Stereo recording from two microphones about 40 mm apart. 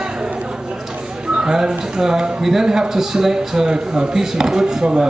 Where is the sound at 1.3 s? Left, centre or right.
Centre.